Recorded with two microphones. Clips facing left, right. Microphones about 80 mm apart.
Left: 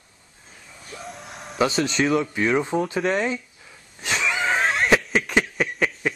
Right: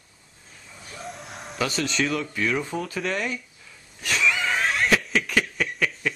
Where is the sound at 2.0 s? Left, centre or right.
Left.